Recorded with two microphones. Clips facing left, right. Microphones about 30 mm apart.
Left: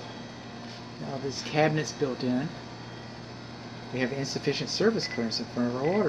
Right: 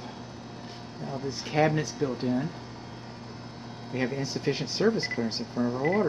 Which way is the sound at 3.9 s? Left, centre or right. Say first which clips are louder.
Even; centre.